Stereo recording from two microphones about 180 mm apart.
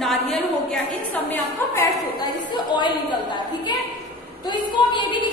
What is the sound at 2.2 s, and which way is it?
Speech, 25° left (ahead or behind).